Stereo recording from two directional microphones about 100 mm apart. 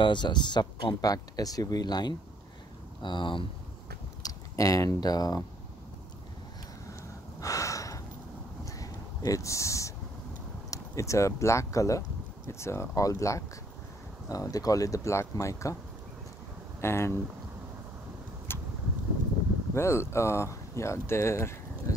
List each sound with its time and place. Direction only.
0.0 s speech: 50° left (ahead or behind)
1.0 s speech: 40° left (ahead or behind); by 3.4 s 55° left (ahead or behind)
4.2 s speech: 35° left (ahead or behind)
6.9 s a sound: 35° left (ahead or behind)
10.7 s speech: 30° left (ahead or behind)
16.8 s speech: 25° left (ahead or behind)
18.5 s vehicle: 20° left (ahead or behind)
19.7 s speech: 25° left (ahead or behind)